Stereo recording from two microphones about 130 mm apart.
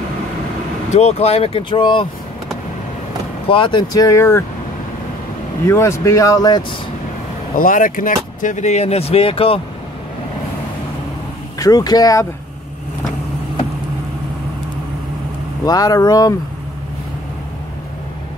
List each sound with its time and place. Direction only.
0.9 s speech: 55° left (ahead or behind); by 2.0 s 40° left (ahead or behind)
3.4 s speech: 40° left (ahead or behind)
4.0 s speech: 25° left (ahead or behind)
5.7 s speech: 20° left (ahead or behind)
7.5 s speech: 90° left; by 9.6 s 45° left (ahead or behind)
11.5 s speech: 30° left (ahead or behind)
15.6 s speech: 30° left (ahead or behind)